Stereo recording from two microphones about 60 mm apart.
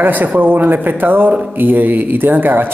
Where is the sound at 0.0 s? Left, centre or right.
Right.